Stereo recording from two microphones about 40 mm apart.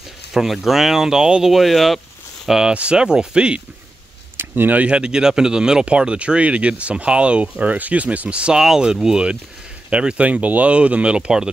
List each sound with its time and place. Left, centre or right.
0.3 s speech: centre
1.5 s speech: centre
2.4 s speech: centre
2.7 s speech: right
4.4 s a sound: right
4.8 s speech: right
8.5 s speech: centre
9.8 s speech: right